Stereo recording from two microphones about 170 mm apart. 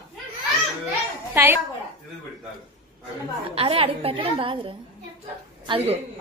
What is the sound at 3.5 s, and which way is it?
A woman's voice, 35° right (ahead or behind).